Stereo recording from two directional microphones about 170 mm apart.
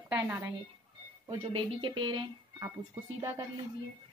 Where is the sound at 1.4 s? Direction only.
30° right (ahead or behind).